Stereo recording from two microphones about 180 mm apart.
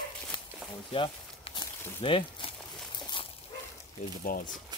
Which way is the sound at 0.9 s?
30° left (ahead or behind).